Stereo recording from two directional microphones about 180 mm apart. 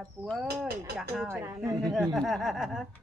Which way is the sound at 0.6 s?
Centre (ahead or behind).